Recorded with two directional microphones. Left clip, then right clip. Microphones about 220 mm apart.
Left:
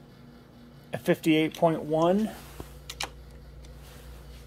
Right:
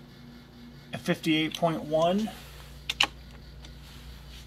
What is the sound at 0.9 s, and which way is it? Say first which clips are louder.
Speech: left 3 dB; 10° left (ahead or behind).